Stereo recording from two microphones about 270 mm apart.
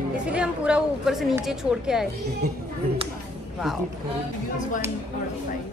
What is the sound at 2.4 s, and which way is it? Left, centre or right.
Speech, right.